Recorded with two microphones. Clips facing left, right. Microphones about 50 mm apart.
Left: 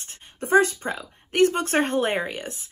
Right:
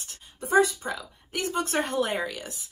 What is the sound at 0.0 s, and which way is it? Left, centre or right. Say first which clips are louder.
Speech: left 4 dB; left.